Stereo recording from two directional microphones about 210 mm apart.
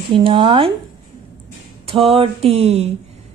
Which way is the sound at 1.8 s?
25° right (ahead or behind).